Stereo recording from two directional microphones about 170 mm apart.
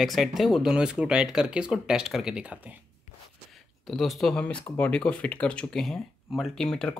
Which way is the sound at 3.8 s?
Centre (ahead or behind).